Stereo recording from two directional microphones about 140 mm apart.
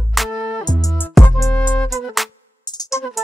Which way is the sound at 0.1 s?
Centre (ahead or behind).